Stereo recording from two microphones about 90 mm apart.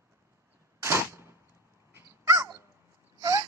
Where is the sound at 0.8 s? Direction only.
30° right (ahead or behind).